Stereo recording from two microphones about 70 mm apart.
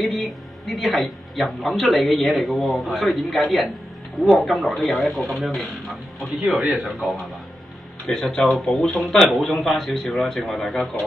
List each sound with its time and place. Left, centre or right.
0.0 s speech: centre